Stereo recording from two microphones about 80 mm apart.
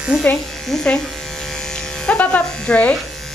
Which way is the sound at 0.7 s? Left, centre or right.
Centre.